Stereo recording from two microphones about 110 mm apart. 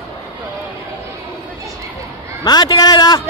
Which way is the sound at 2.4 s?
40° left (ahead or behind).